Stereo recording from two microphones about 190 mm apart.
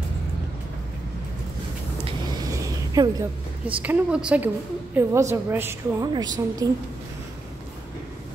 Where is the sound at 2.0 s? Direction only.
20° right (ahead or behind).